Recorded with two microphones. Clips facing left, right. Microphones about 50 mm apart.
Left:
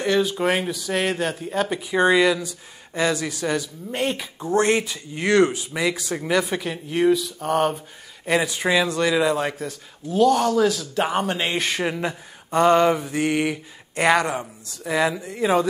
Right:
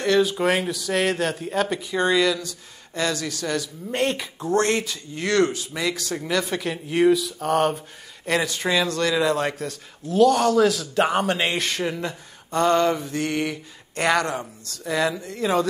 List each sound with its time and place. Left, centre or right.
0.0 s a man's voice: centre
1.8 s speech: centre
3.9 s a man's voice: centre